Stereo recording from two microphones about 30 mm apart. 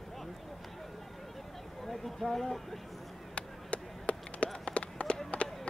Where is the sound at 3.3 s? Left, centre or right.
Left.